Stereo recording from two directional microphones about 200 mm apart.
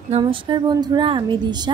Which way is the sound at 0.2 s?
25° right (ahead or behind).